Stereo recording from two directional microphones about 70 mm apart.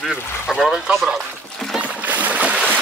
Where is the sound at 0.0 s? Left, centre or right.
Centre.